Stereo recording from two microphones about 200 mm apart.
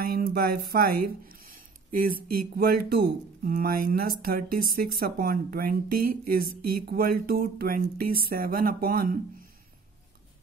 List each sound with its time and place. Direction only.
0.0 s speech: 50° right (ahead or behind)